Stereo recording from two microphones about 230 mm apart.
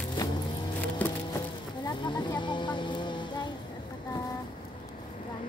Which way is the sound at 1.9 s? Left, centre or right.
Centre.